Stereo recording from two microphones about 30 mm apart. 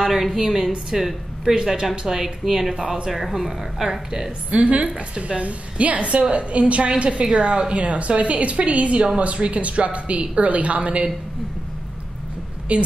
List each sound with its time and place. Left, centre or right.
0.0 s a woman's voice: centre
1.5 s speech: centre
1.9 s a woman's voice: centre
4.5 s a woman's voice: right
12.7 s a woman's voice: right